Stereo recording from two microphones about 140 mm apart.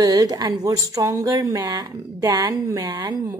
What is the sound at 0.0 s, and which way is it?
A woman's voice, 25° right (ahead or behind).